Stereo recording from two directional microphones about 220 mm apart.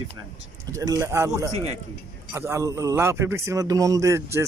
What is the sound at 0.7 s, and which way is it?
A man's voice, 15° right (ahead or behind).